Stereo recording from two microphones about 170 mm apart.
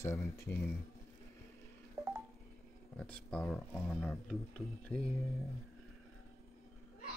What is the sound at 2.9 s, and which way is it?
Speech, 5° left (ahead or behind).